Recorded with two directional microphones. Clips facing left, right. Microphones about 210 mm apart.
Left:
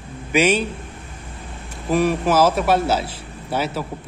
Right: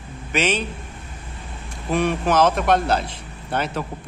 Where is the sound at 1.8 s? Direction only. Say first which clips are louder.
Left 2 dB; 5° left (ahead or behind).